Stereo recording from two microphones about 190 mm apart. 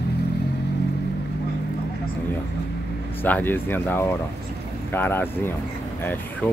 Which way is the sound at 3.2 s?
10° left (ahead or behind).